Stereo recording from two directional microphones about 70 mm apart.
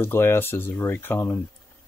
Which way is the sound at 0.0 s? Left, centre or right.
Left.